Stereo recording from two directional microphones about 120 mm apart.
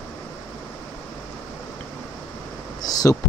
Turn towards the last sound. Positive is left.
turn(degrees=30)  # may be behind; listen again after turning